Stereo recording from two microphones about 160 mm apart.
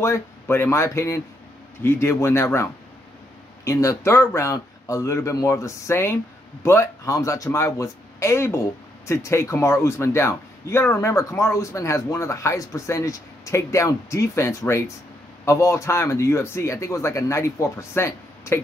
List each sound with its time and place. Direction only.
0.0 s a man's voice: 15° left (ahead or behind)